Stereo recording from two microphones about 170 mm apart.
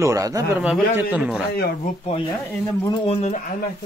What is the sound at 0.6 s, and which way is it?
Speech, 10° right (ahead or behind).